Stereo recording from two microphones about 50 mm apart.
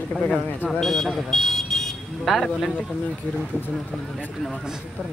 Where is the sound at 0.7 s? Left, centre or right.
Centre.